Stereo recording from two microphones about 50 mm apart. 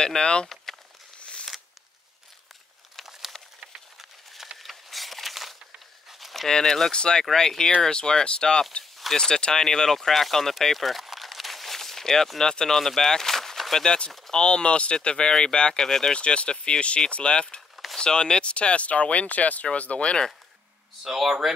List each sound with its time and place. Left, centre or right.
0.0 s speech: centre
3.1 s a sound: centre
6.5 s speech: centre
14.1 s speech: centre
14.4 s speech: centre
21.0 s speech: centre